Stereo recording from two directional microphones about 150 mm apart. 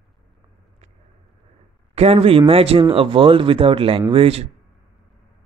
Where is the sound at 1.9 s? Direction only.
40° right (ahead or behind).